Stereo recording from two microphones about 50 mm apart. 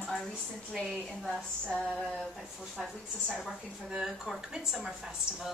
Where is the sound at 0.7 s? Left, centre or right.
Centre.